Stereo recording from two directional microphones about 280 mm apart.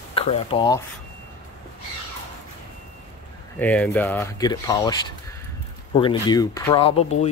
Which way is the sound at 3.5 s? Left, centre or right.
Centre.